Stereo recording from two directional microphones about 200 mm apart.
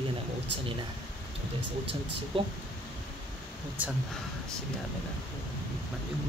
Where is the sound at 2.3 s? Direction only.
25° right (ahead or behind).